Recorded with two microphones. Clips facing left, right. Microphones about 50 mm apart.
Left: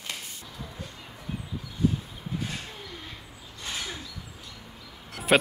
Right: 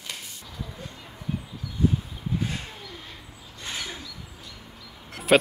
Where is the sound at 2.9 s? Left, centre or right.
Centre.